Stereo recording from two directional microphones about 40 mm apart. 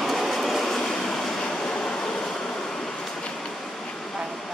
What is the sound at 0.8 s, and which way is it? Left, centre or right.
Vehicle, centre.